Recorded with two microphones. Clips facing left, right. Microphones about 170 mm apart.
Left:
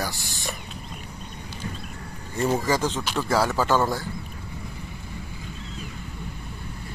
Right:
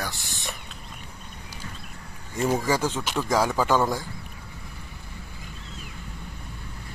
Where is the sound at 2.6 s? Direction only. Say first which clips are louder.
Left 1 dB; 10° right (ahead or behind).